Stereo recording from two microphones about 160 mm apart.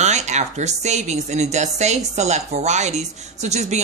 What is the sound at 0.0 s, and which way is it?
A woman's voice, 45° right (ahead or behind).